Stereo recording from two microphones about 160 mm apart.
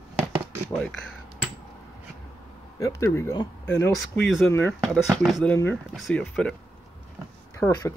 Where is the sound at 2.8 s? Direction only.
20° left (ahead or behind).